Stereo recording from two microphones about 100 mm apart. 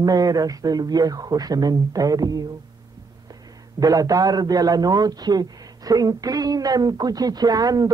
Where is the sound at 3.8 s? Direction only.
35° right (ahead or behind).